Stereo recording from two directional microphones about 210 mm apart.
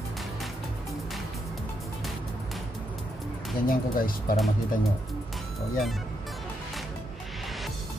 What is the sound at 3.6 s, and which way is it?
Speech, 40° left (ahead or behind).